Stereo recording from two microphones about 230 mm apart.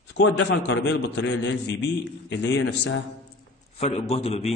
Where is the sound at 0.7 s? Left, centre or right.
Left.